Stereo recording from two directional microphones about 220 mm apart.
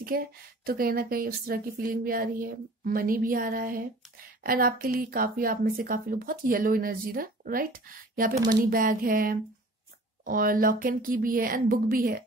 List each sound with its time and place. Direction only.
0.0 s a woman's voice: 40° right (ahead or behind)